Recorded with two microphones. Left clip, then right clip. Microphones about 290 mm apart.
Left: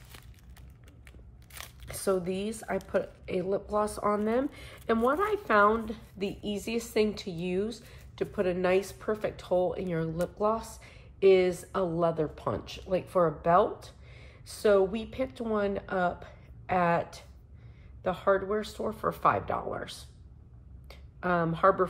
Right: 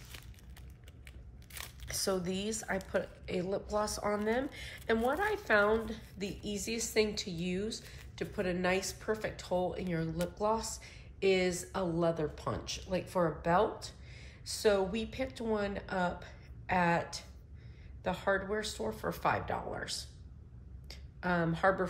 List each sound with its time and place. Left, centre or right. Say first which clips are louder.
1.5 s crumpling: left 1 dB; centre
1.9 s a woman's voice: left 5 dB; centre